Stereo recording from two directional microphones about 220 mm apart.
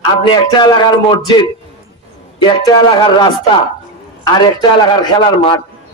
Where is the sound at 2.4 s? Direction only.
20° left (ahead or behind).